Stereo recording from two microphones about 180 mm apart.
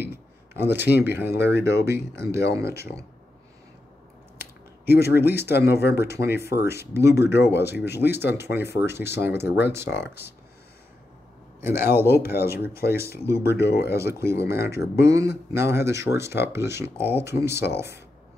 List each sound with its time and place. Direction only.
0.0 s speech: 10° right (ahead or behind)
4.4 s a sound: 60° left (ahead or behind)
5.6 s speech: 15° right (ahead or behind)
5.9 s speech: 65° left (ahead or behind)
6.2 s speech: 15° right (ahead or behind)
11.6 s speech: 15° right (ahead or behind)